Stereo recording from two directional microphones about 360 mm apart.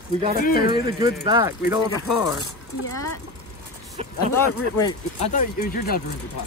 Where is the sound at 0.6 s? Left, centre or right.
Centre.